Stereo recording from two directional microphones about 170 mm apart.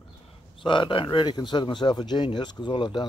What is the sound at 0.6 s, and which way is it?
Speech, 30° left (ahead or behind).